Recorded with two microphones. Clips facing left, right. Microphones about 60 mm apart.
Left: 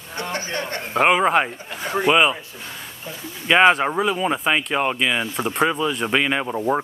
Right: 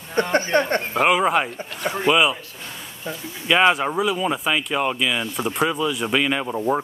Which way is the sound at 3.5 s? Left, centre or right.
Left.